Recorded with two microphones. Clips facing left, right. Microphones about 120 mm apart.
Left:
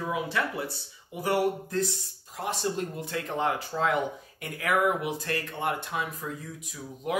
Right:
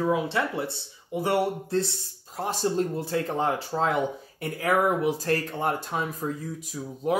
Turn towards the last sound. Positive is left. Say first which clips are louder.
# right 4 dB
turn(degrees=-35)  # may be behind; listen again after turning